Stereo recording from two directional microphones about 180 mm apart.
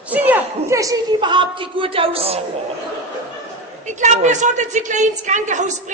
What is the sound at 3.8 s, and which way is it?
A woman's voice, 40° right (ahead or behind).